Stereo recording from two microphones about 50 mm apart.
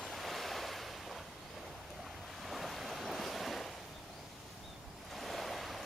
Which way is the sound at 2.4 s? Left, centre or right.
Centre.